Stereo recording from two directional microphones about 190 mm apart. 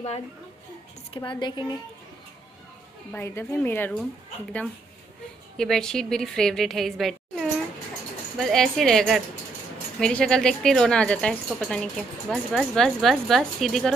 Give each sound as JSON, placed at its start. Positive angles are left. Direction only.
{"t": 1.1, "sound": "a woman's voice", "side_deg": 25}
{"t": 3.1, "sound": "speech", "side_deg": 15}
{"t": 5.6, "sound": "speech", "side_deg": 5}